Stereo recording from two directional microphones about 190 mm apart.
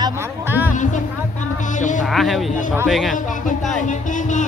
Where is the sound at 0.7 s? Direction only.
40° left (ahead or behind).